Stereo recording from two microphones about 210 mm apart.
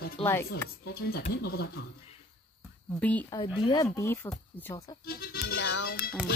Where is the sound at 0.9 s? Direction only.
50° left (ahead or behind).